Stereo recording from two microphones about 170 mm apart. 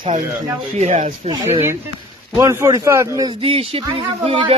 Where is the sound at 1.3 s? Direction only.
15° right (ahead or behind).